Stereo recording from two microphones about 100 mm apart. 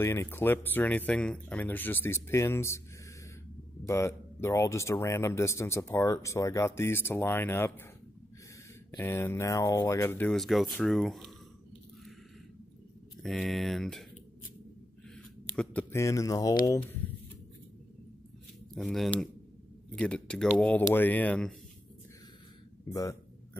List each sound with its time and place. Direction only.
0.0 s speech: 25° left (ahead or behind)
3.8 s speech: 30° left (ahead or behind)
9.0 s speech: 25° left (ahead or behind)
10.3 s speech: centre (ahead or behind)
13.2 s speech: centre (ahead or behind)
15.5 s a sound: 10° left (ahead or behind)
15.9 s speech: 30° left (ahead or behind)
18.8 s speech: centre (ahead or behind)